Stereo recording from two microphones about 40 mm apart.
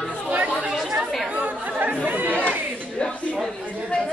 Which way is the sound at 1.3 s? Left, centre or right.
Right.